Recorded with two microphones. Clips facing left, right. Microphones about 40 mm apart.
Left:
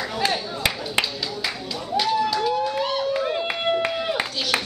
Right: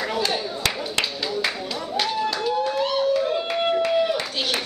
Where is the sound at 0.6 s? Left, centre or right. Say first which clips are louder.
Left 1 dB; centre.